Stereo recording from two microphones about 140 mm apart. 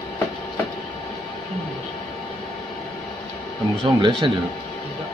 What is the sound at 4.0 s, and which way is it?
Speech, 35° right (ahead or behind).